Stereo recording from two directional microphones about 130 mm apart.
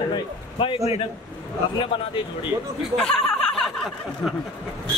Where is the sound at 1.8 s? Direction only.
40° left (ahead or behind).